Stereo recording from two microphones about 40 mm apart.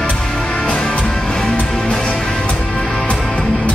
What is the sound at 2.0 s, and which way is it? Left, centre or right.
Music, left.